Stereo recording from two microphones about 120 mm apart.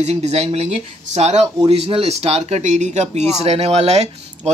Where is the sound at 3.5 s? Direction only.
60° right (ahead or behind).